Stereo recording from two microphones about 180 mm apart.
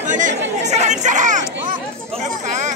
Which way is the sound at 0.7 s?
40° right (ahead or behind).